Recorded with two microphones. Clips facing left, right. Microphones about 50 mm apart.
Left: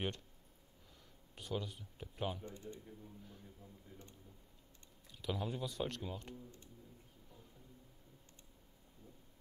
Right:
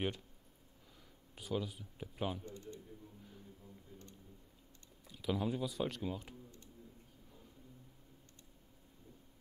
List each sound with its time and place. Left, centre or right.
0.9 s speech: centre
2.4 s typing: left
5.0 s speech: centre